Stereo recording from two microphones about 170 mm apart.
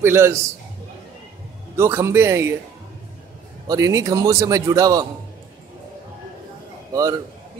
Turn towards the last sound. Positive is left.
turn(degrees=-20)  # may be behind; listen again after turning